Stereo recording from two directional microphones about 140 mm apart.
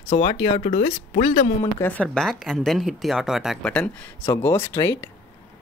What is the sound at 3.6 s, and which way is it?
A woman's voice, 10° left (ahead or behind).